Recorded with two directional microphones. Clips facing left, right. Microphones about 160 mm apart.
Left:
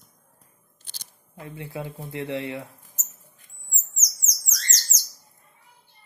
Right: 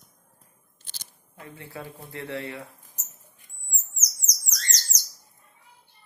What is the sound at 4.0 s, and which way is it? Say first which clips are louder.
Music: even; 15° right (ahead or behind).